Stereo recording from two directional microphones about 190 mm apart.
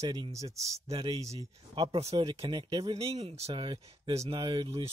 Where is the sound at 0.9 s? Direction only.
30° right (ahead or behind).